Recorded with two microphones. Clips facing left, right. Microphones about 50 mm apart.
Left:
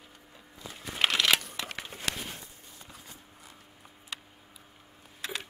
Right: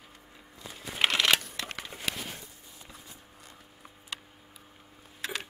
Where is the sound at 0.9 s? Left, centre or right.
Centre.